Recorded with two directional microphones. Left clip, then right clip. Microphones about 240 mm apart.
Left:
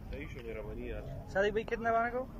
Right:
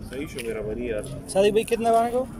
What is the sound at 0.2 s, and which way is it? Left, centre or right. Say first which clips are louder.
Speech: right 14 dB; right.